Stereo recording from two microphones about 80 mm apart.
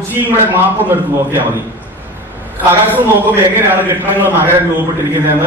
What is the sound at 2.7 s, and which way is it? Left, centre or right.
A man's voice, right.